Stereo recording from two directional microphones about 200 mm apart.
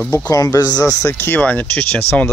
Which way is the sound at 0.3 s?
20° left (ahead or behind).